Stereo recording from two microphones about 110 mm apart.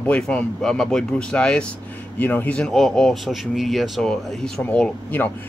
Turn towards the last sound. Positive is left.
turn(degrees=10)  # may be behind; listen again after turning